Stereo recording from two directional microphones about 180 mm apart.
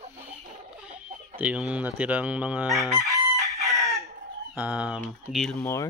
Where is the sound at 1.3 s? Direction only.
5° right (ahead or behind).